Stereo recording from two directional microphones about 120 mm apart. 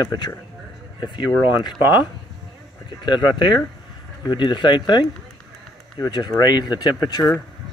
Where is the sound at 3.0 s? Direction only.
40° left (ahead or behind).